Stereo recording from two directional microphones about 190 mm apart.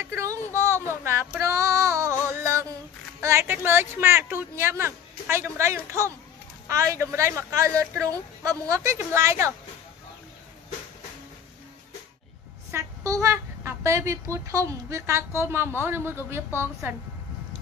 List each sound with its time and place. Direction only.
0.0 s female singing: 15° right (ahead or behind)
3.2 s a woman's voice: 15° right (ahead or behind)
12.7 s a woman's voice: 15° right (ahead or behind)